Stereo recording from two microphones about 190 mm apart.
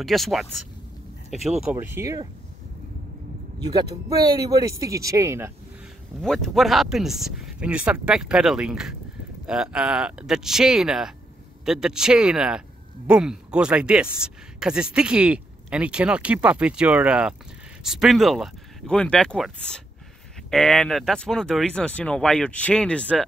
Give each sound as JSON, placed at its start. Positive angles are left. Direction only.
{"t": 0.0, "sound": "speech", "side_deg": 0}
{"t": 3.5, "sound": "speech", "side_deg": -20}
{"t": 6.2, "sound": "speech", "side_deg": 5}